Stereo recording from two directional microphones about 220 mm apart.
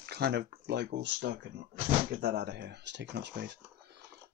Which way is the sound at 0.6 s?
50° right (ahead or behind).